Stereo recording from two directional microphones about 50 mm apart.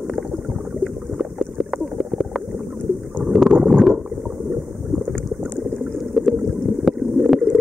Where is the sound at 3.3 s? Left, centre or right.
Centre.